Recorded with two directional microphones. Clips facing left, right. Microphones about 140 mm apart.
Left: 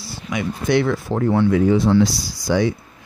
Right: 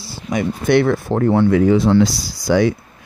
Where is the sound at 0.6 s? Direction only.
55° right (ahead or behind).